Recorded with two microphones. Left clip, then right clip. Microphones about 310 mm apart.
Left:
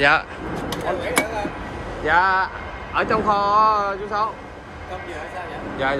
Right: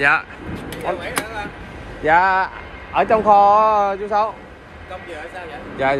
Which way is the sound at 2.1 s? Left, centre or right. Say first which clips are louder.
Right 3 dB; centre.